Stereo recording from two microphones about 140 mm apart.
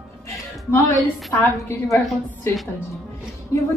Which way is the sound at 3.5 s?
20° left (ahead or behind).